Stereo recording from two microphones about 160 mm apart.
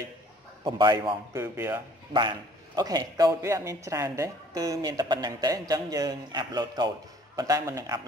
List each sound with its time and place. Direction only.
0.7 s a man's voice: 25° right (ahead or behind)